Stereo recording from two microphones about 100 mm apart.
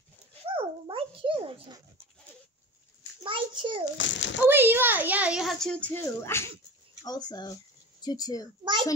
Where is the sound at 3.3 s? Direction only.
55° right (ahead or behind).